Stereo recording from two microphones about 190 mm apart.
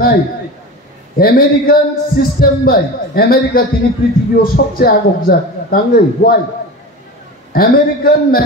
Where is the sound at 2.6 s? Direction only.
50° left (ahead or behind).